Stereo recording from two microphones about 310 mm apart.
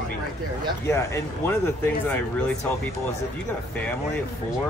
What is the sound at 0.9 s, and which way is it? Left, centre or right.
Speech, centre.